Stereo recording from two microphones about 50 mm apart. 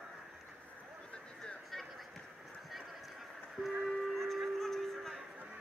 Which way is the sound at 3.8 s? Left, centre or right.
Centre.